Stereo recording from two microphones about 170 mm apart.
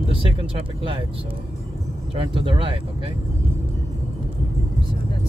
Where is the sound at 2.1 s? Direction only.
30° right (ahead or behind).